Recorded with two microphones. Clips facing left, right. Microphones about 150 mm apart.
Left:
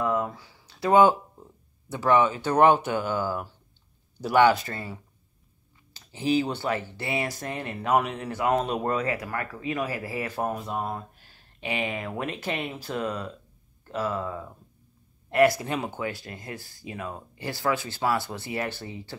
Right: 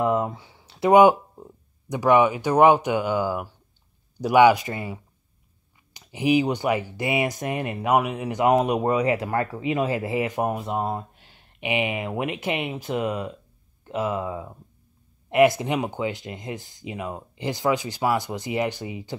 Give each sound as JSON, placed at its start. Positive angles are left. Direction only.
{"t": 0.0, "sound": "speech", "side_deg": -25}
{"t": 9.1, "sound": "speech", "side_deg": -25}